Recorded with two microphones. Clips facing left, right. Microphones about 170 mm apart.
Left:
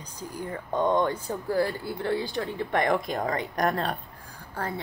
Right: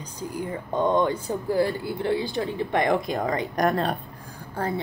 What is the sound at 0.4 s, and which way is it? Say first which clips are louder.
Speech: right 2 dB; 20° right (ahead or behind).